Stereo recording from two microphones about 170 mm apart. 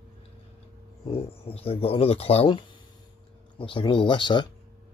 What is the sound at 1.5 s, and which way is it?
Speech, 35° left (ahead or behind).